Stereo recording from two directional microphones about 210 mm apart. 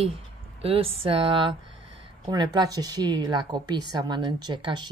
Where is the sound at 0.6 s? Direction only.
25° right (ahead or behind).